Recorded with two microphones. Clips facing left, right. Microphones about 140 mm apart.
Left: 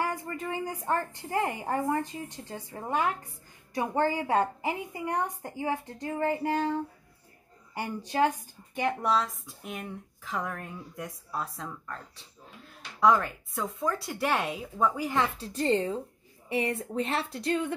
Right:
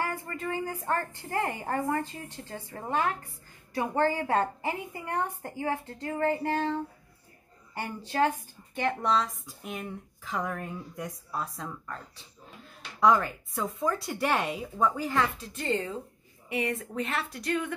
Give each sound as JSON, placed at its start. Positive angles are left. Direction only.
{"t": 0.0, "sound": "a woman's voice", "side_deg": 15}
{"t": 15.3, "sound": "a woman's voice", "side_deg": 35}